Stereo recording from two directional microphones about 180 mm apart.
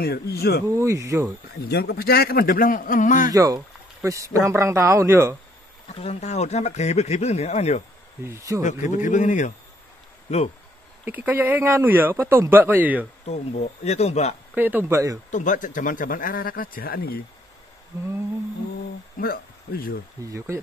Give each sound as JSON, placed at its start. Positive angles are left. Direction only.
{"t": 0.0, "sound": "speech", "side_deg": 60}
{"t": 0.7, "sound": "speech", "side_deg": -15}
{"t": 1.6, "sound": "speech", "side_deg": 65}
{"t": 3.3, "sound": "speech", "side_deg": -20}
{"t": 5.9, "sound": "speech", "side_deg": 35}
{"t": 8.3, "sound": "speech", "side_deg": -15}
{"t": 8.9, "sound": "speech", "side_deg": 45}
{"t": 11.1, "sound": "speech", "side_deg": -10}
{"t": 13.2, "sound": "speech", "side_deg": 35}
{"t": 14.5, "sound": "speech", "side_deg": -10}
{"t": 15.3, "sound": "speech", "side_deg": 45}
{"t": 19.1, "sound": "speech", "side_deg": 55}
{"t": 20.2, "sound": "speech", "side_deg": -15}